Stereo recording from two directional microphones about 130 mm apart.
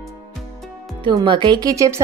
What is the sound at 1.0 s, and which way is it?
A woman's voice, 35° right (ahead or behind).